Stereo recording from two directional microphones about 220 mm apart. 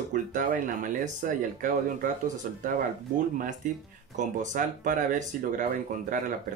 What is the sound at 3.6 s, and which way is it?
Speech, 35° right (ahead or behind).